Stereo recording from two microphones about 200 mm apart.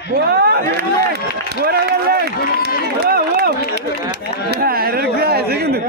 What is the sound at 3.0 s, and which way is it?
Run, 50° right (ahead or behind).